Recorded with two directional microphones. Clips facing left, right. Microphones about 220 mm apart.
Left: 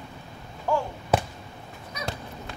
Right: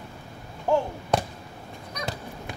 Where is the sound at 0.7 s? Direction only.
20° right (ahead or behind).